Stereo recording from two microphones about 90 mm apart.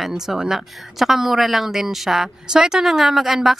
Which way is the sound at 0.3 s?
5° right (ahead or behind).